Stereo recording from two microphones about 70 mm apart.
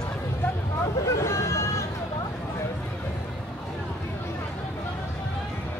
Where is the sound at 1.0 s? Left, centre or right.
Left.